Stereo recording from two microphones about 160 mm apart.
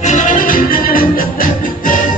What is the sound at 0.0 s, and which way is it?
Music, 50° left (ahead or behind).